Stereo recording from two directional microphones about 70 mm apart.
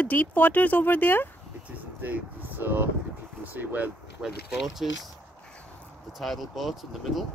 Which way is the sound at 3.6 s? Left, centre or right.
Right.